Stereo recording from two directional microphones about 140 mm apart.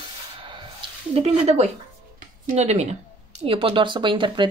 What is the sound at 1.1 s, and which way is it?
Speech, 45° right (ahead or behind).